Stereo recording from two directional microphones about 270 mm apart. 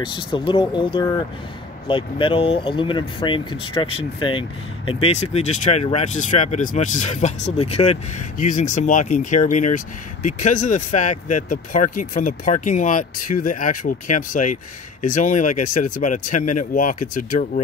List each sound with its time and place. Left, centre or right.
0.0 s speech: centre
16.3 s speech: left
16.7 s speech: left